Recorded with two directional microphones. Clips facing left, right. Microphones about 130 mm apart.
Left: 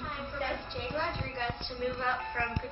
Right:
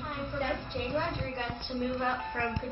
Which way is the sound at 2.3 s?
20° right (ahead or behind).